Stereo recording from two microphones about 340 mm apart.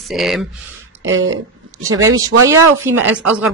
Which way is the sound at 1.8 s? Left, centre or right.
Right.